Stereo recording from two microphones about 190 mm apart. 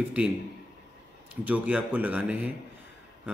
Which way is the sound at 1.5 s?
10° right (ahead or behind).